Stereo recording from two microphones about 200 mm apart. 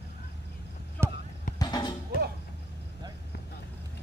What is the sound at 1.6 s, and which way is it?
Music, 20° left (ahead or behind).